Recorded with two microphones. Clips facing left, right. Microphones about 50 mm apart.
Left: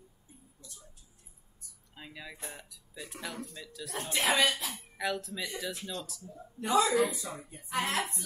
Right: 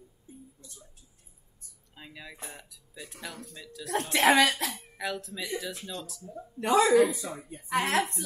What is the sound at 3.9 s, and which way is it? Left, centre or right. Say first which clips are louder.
Speech: right 7 dB; right.